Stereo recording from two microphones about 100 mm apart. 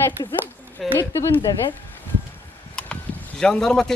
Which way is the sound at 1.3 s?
45° left (ahead or behind).